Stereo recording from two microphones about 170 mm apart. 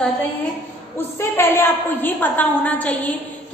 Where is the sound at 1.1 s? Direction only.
15° left (ahead or behind).